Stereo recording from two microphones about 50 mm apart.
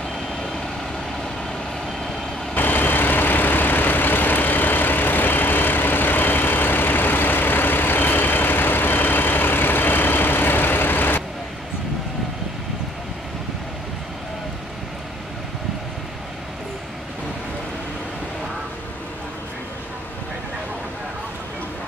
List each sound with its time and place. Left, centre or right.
2.5 s vehicle: left